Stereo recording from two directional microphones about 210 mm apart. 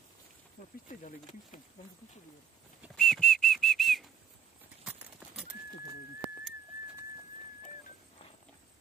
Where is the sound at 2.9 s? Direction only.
Centre (ahead or behind).